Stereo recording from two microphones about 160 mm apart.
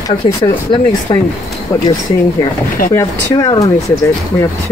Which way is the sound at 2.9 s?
20° left (ahead or behind).